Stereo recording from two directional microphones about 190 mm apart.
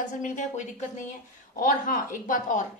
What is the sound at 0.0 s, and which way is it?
A woman's voice, 40° left (ahead or behind).